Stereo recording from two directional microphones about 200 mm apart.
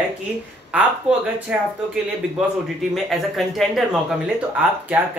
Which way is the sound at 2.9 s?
Centre (ahead or behind).